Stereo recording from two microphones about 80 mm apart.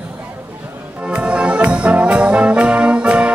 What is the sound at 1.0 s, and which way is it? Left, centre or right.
Brass instrument, centre.